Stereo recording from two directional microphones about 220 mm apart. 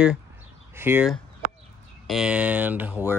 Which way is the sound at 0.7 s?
10° right (ahead or behind).